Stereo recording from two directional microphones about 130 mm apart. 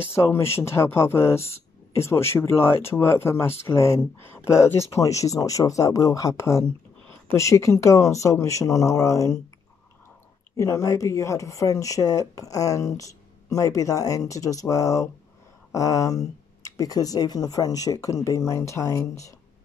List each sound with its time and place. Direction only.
0.1 s speech: 20° left (ahead or behind)
10.5 s speech: 25° left (ahead or behind)